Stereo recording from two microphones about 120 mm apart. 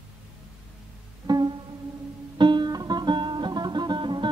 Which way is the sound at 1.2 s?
35° right (ahead or behind).